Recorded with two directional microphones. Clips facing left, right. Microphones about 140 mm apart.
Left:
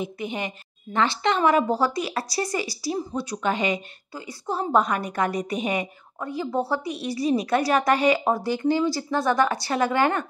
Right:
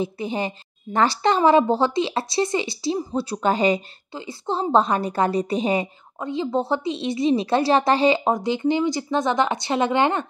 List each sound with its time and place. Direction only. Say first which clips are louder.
0.0 s a woman's voice: right 4 dB; 30° right (ahead or behind)